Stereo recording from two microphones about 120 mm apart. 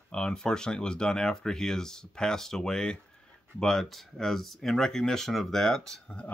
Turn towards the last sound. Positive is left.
turn(degrees=10)  # may be behind; listen again after turning